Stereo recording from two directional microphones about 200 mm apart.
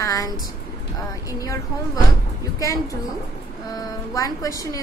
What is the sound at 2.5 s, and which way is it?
A woman's voice, 15° left (ahead or behind).